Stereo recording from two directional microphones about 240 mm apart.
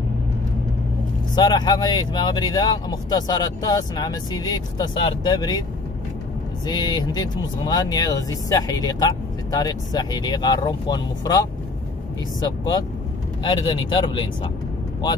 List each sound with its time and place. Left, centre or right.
1.3 s speech: centre
6.6 s speech: centre